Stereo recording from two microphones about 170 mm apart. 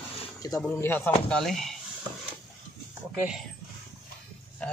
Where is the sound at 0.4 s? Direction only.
15° left (ahead or behind).